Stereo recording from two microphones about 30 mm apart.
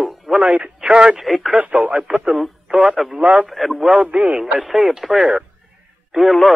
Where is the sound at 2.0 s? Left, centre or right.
Right.